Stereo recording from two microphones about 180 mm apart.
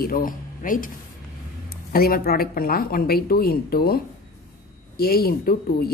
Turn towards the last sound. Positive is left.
turn(degrees=55)  # may be behind; listen again after turning